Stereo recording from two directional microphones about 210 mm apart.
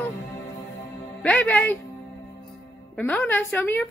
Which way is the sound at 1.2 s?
5° left (ahead or behind).